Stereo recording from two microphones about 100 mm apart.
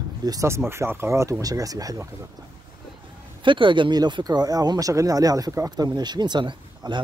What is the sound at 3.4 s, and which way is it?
Speech, 55° right (ahead or behind).